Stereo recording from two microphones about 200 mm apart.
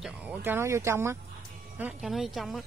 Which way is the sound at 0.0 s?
5° right (ahead or behind).